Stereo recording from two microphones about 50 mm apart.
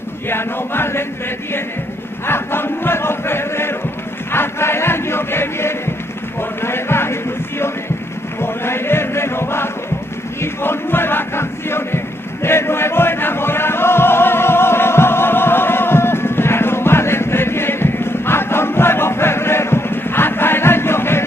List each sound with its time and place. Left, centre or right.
0.3 s chant: left
2.2 s chant: left
6.6 s music: left
8.4 s chant: left
10.4 s crowd: left